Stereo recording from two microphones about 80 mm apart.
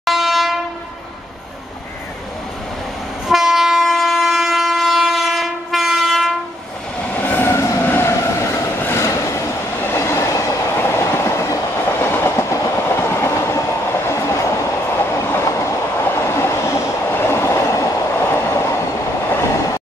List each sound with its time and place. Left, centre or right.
0.0 s train: centre
3.3 s train: centre
7.2 s train: left
7.8 s train: left
8.2 s train: left
8.7 s train: left
9.0 s vehicle: left
9.8 s train: left